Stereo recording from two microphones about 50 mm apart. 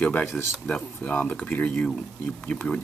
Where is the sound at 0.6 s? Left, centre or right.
Left.